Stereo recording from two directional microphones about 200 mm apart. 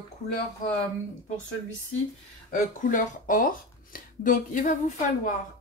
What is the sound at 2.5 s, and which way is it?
Speech, 40° left (ahead or behind).